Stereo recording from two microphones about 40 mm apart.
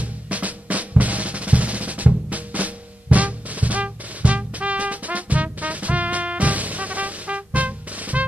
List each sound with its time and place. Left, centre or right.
0.0 s drum: right